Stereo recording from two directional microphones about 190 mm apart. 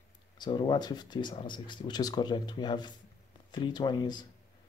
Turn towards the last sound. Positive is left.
turn(degrees=25)  # may be behind; listen again after turning